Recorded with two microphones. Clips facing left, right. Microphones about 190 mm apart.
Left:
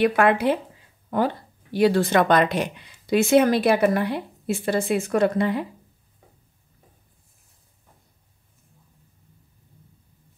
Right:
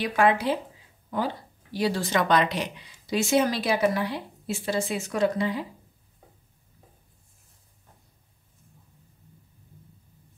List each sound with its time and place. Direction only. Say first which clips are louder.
0.0 s speech: left 4 dB; 60° left (ahead or behind)